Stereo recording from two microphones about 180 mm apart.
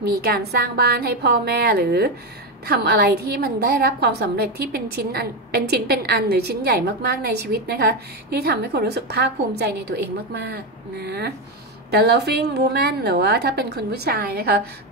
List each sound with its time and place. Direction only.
0.2 s a woman's voice: 60° right (ahead or behind)